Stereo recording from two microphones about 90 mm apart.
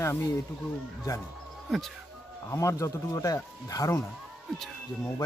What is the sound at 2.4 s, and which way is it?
A man's voice, 35° left (ahead or behind).